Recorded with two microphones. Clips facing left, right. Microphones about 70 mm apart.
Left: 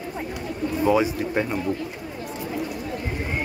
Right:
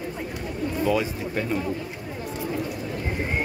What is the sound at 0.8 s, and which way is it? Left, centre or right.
Speech, centre.